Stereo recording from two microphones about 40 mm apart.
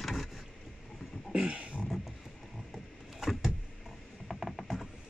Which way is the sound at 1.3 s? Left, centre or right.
Right.